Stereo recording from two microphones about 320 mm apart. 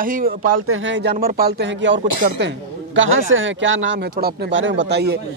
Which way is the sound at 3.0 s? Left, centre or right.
Right.